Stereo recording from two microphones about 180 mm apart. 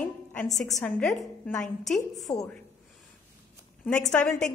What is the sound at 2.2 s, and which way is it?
Speech, 20° left (ahead or behind).